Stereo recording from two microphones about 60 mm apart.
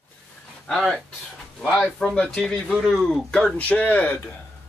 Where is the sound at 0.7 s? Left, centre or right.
Centre.